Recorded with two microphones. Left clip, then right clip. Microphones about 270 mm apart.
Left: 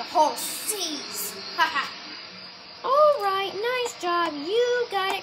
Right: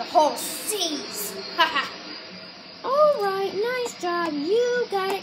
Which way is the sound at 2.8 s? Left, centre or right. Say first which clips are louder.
Even; left.